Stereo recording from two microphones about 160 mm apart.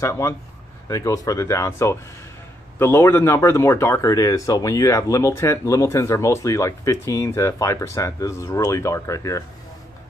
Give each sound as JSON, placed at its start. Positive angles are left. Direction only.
{"t": 0.0, "sound": "speech", "side_deg": 20}